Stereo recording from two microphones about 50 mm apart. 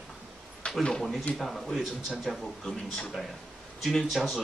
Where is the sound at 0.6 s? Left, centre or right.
Left.